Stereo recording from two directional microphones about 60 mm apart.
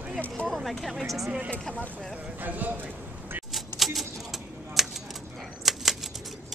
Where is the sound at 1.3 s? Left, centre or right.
Right.